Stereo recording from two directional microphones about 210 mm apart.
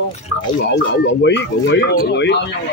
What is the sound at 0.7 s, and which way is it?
Speech, 55° left (ahead or behind).